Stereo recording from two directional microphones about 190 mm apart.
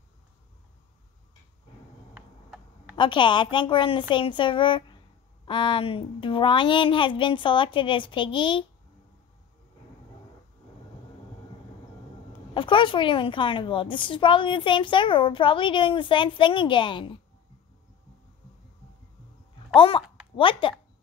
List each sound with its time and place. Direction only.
2.1 s tick: 10° right (ahead or behind)
3.0 s a woman's voice: 25° left (ahead or behind)
12.5 s a woman's voice: 25° left (ahead or behind)
19.7 s a sound: 25° left (ahead or behind)